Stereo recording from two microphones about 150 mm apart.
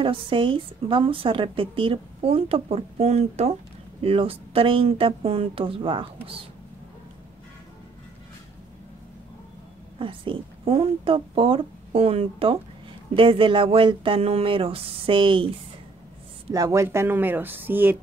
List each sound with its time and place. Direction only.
0.0 s a woman's voice: 35° right (ahead or behind)
9.9 s a woman's voice: 35° right (ahead or behind)
16.5 s speech: 20° right (ahead or behind)